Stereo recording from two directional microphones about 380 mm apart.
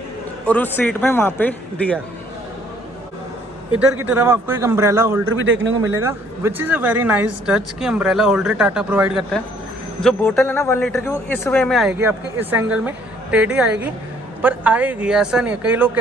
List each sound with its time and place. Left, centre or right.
0.5 s a man's voice: centre
4.0 s a man's voice: centre
5.2 s speech: right
5.9 s a man's voice: centre